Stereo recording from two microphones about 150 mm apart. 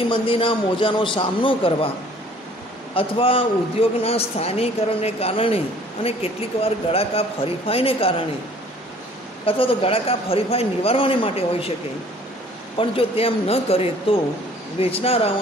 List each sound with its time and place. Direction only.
0.1 s a man's voice: 35° left (ahead or behind)
2.9 s a man's voice: 40° left (ahead or behind)
9.5 s a man's voice: 40° left (ahead or behind)
12.7 s a man's voice: 40° left (ahead or behind)